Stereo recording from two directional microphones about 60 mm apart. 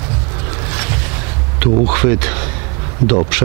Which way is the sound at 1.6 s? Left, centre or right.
Centre.